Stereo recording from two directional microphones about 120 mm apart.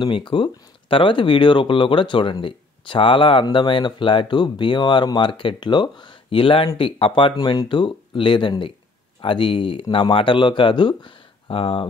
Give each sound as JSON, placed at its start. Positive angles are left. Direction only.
{"t": 0.0, "sound": "speech", "side_deg": 45}